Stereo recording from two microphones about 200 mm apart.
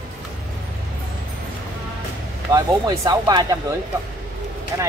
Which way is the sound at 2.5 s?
20° right (ahead or behind).